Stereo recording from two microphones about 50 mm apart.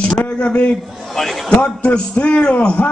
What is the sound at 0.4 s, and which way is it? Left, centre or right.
Speech, left.